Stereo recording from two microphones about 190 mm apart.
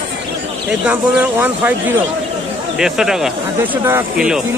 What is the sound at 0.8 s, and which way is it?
Speech, 10° right (ahead or behind).